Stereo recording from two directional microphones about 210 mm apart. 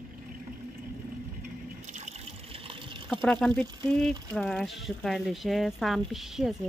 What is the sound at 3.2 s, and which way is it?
Speech, 5° left (ahead or behind).